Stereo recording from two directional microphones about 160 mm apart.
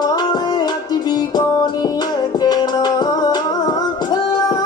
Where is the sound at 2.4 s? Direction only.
25° left (ahead or behind).